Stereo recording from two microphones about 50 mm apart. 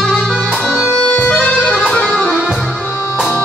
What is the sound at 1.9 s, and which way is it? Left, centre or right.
Music, centre.